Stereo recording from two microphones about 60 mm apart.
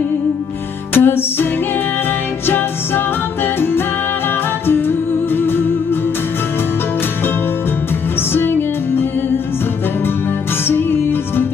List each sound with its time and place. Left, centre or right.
0.9 s music: left
4.6 s music: left
8.3 s music: left
10.7 s music: left